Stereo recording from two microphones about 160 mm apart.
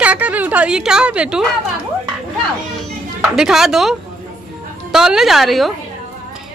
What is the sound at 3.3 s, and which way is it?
A woman's voice, 5° right (ahead or behind).